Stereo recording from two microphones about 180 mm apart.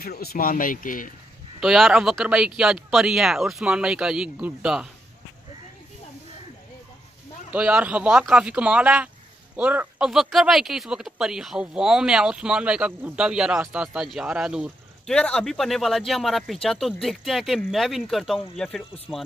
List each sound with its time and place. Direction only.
0.0 s speech: 60° left (ahead or behind)
1.6 s speech: centre (ahead or behind)
7.5 s speech: 5° right (ahead or behind)